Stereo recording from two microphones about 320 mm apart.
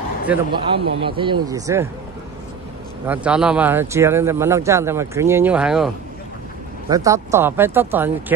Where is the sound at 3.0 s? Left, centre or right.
Centre.